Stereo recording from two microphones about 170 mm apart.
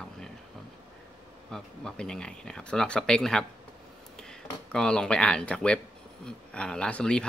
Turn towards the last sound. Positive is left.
turn(degrees=5)  # may be behind; listen again after turning